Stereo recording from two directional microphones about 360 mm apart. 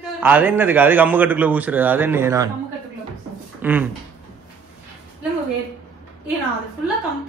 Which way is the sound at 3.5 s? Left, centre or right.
Centre.